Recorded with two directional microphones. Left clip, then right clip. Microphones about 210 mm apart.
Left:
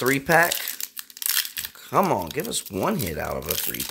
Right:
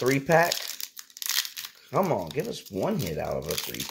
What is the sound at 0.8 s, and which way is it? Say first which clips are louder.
Crumpling: left 3 dB; centre (ahead or behind).